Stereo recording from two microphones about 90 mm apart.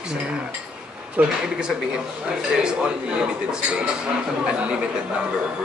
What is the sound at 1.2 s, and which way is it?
Speech, 20° right (ahead or behind).